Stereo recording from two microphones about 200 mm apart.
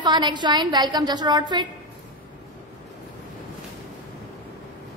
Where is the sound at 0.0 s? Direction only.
20° right (ahead or behind).